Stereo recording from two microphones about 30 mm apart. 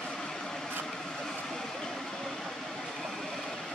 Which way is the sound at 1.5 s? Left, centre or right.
Centre.